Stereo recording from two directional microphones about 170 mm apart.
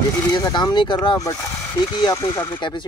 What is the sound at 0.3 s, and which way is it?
Speech, 25° left (ahead or behind).